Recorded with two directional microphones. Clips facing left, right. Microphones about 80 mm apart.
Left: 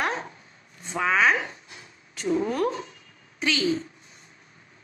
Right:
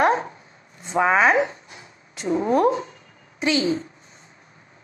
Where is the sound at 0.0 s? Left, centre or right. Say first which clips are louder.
Right 9 dB; right.